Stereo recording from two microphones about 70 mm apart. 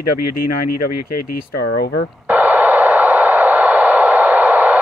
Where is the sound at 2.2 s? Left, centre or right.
Right.